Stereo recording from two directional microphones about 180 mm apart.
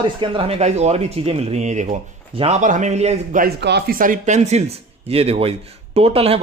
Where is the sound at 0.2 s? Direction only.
30° right (ahead or behind).